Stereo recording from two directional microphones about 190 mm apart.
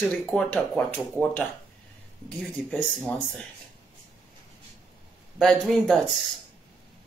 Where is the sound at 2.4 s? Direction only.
5° left (ahead or behind).